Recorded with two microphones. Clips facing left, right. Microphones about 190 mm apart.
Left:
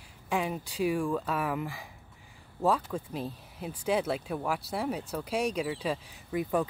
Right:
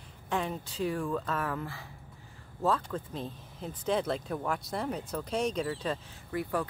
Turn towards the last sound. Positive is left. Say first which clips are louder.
# left 3 dB
turn(degrees=15)  # may be behind; listen again after turning